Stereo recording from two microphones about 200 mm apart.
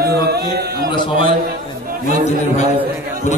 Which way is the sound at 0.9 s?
25° left (ahead or behind).